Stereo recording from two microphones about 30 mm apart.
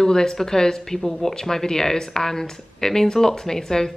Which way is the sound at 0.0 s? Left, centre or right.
Left.